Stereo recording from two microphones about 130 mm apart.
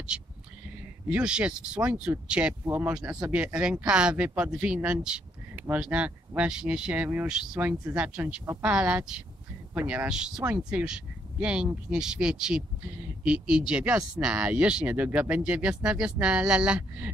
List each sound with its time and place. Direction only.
1.0 s speech: 10° right (ahead or behind)